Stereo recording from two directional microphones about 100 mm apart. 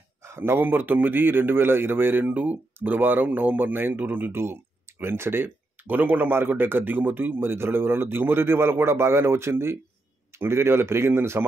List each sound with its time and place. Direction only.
0.2 s a man's voice: 25° right (ahead or behind)